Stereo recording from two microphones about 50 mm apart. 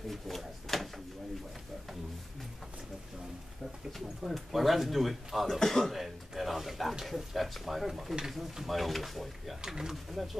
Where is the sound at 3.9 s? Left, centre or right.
Centre.